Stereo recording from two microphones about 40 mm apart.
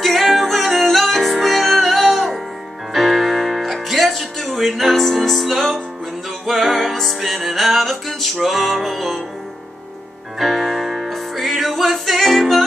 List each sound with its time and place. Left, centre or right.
0.0 s music: centre
10.4 s music: centre